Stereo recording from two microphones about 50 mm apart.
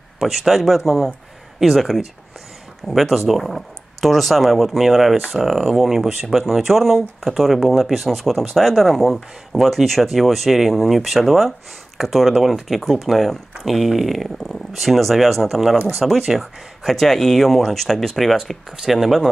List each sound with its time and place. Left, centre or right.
0.2 s speech: centre